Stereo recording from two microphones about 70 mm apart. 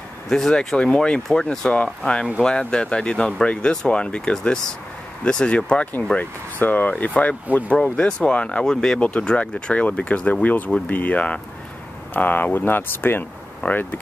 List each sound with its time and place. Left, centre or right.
0.3 s speech: centre; by 13.8 s left